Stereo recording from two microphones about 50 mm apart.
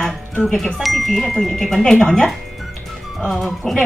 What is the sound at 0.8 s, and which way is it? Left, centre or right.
Speech, centre.